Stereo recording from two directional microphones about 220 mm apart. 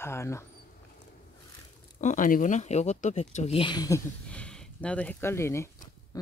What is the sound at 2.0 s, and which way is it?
Speech, 35° left (ahead or behind).